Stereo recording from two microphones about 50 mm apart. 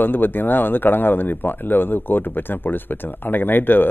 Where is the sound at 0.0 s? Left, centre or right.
Left.